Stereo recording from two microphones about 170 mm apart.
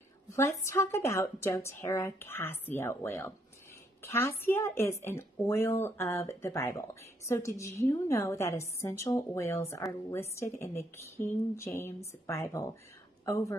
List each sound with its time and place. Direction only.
0.3 s a woman's voice: 15° left (ahead or behind)